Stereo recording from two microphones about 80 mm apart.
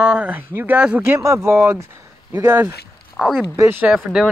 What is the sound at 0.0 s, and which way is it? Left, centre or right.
Speech, centre.